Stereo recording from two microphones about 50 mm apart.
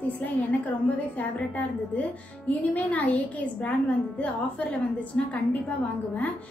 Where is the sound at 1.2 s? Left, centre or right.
Left.